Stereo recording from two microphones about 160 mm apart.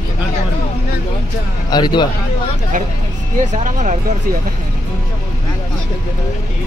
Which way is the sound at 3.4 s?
50° right (ahead or behind).